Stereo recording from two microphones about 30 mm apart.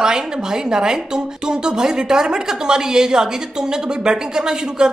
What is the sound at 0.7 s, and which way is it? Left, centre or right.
Speech, right.